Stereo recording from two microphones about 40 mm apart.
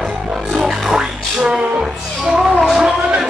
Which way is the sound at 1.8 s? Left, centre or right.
Centre.